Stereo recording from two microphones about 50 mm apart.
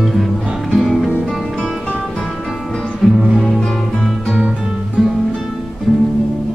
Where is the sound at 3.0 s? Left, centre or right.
Centre.